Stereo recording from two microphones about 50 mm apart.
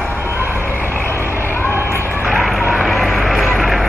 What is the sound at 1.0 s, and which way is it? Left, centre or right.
Frog, left.